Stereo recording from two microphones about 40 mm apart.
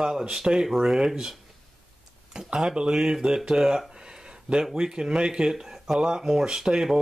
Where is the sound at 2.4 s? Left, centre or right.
Right.